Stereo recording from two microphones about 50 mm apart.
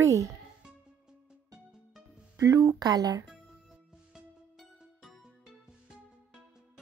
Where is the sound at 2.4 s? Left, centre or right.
Right.